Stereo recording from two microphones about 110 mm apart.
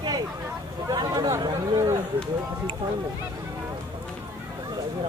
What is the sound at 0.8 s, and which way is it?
Speech, 35° right (ahead or behind).